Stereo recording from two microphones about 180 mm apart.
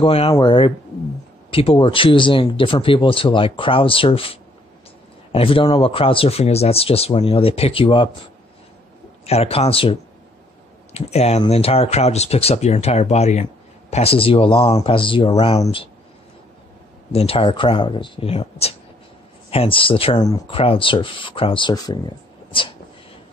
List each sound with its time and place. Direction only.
0.0 s speech: 30° left (ahead or behind)
9.2 s speech: 35° left (ahead or behind)
17.1 s speech: 35° left (ahead or behind)
20.2 s speech: 20° left (ahead or behind)
20.5 s speech: 30° left (ahead or behind)